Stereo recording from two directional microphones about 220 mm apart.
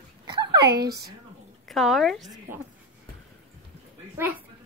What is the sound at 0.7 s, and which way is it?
Speech, 45° right (ahead or behind).